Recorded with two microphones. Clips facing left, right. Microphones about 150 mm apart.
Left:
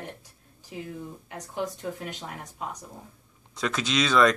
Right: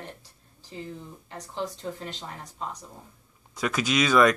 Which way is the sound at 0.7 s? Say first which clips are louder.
Left 1 dB; 75° left (ahead or behind).